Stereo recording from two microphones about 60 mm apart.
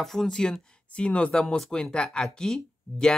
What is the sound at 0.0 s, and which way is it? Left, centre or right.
Speech, centre.